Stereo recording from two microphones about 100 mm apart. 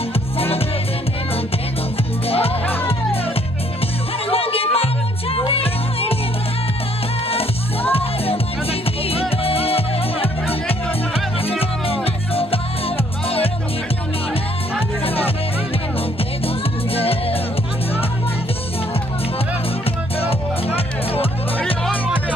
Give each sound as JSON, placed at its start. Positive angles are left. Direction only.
{"t": 0.1, "sound": "music", "side_deg": 75}
{"t": 2.2, "sound": "music", "side_deg": 75}
{"t": 4.3, "sound": "music", "side_deg": 70}
{"t": 9.4, "sound": "music", "side_deg": 75}
{"t": 11.9, "sound": "music", "side_deg": 70}
{"t": 15.0, "sound": "music", "side_deg": 75}
{"t": 16.9, "sound": "music", "side_deg": 75}
{"t": 20.2, "sound": "music", "side_deg": 75}